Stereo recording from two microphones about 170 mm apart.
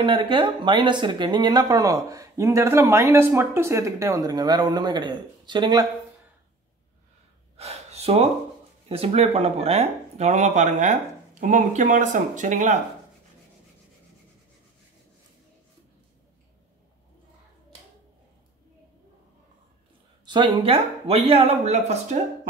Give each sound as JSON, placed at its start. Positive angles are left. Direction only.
{"t": 0.0, "sound": "speech", "side_deg": -30}
{"t": 7.5, "sound": "gasp", "side_deg": -40}
{"t": 8.8, "sound": "speech", "side_deg": -35}
{"t": 20.2, "sound": "a woman's voice", "side_deg": -25}